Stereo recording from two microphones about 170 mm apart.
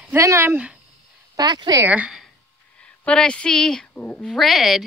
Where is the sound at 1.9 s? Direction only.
5° right (ahead or behind).